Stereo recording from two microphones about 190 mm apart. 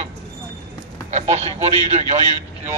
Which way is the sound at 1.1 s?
35° right (ahead or behind).